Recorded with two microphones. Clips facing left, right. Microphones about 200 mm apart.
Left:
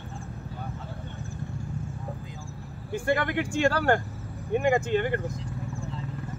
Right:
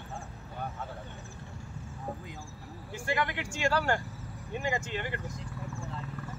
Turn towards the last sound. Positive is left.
turn(degrees=55)  # may be behind; listen again after turning